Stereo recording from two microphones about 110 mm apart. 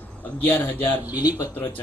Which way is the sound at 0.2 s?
20° left (ahead or behind).